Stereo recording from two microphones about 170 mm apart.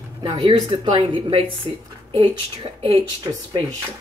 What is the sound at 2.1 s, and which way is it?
Speech, 30° right (ahead or behind).